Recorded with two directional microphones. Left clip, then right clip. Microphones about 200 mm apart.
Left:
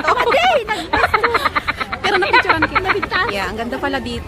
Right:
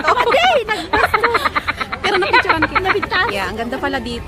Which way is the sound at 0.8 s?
Centre (ahead or behind).